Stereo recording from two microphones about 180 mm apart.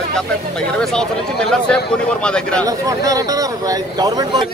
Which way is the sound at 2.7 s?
20° right (ahead or behind).